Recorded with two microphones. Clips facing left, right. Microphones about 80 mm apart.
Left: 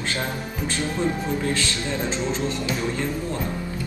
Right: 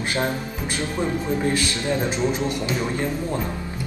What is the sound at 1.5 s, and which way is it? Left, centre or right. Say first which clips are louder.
Speech: right 3 dB; centre.